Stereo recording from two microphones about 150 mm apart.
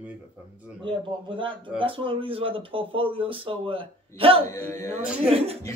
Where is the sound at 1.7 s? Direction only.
35° right (ahead or behind).